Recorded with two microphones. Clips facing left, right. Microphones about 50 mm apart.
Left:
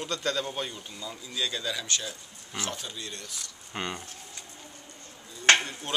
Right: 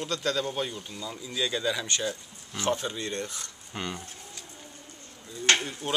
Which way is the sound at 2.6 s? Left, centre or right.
Right.